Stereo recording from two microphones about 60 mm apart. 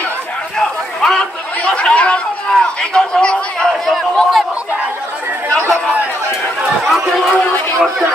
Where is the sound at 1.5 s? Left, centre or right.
Left.